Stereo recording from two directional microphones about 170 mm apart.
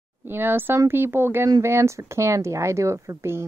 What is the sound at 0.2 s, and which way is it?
A woman's voice, 10° right (ahead or behind).